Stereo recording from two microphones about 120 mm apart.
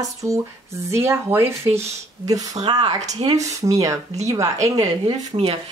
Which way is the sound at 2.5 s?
60° right (ahead or behind).